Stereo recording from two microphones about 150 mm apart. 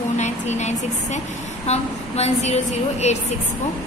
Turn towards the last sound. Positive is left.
turn(degrees=50)  # may be behind; listen again after turning